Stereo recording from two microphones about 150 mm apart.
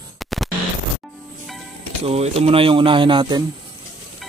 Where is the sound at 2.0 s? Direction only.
40° right (ahead or behind).